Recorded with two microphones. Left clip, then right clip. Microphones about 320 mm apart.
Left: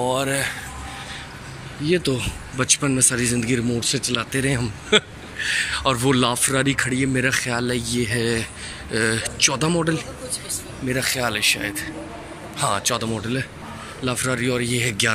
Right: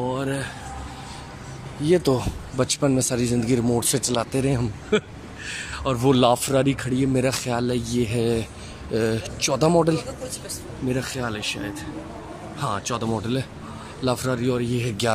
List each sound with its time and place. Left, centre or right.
0.1 s speech: centre
1.8 s speech: centre